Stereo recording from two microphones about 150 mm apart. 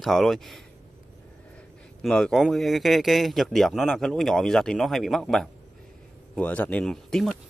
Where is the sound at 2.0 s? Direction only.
5° left (ahead or behind).